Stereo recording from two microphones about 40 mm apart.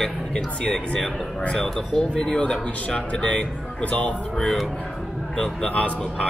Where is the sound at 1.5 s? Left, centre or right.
Centre.